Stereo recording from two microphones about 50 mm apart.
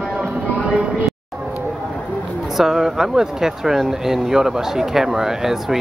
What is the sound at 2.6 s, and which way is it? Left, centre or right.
Speech, centre.